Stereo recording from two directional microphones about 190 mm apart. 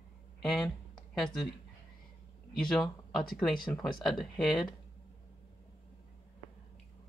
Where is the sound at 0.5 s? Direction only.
5° left (ahead or behind).